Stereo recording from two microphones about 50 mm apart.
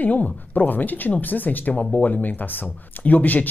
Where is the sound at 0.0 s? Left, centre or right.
Left.